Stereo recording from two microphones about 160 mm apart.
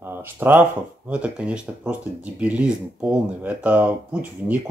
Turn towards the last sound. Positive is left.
turn(degrees=-10)  # may be behind; listen again after turning